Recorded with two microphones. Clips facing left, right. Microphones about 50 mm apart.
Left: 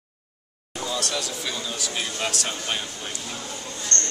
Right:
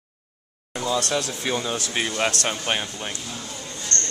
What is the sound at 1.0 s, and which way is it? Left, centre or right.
Speech, right.